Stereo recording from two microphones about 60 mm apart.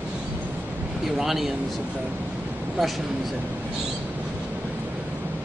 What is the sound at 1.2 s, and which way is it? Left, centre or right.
Speech, centre.